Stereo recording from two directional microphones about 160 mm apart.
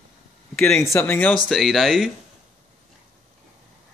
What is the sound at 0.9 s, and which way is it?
Speech, 15° left (ahead or behind).